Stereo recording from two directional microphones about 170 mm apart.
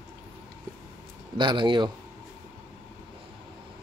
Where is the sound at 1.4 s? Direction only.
25° right (ahead or behind).